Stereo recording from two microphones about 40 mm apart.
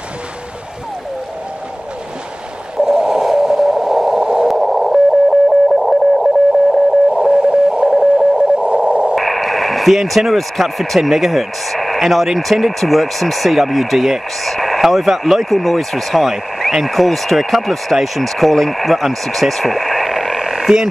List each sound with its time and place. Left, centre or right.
2.8 s radio: centre
4.5 s sidetone: centre
7.1 s sidetone: right
7.9 s sidetone: centre
8.4 s sidetone: right
9.1 s speech: centre